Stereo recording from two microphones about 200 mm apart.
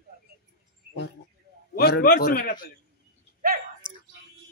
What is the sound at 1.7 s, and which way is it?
A man's voice, 50° left (ahead or behind).